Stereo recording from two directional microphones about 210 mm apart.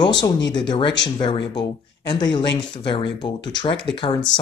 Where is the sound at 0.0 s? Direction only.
20° left (ahead or behind).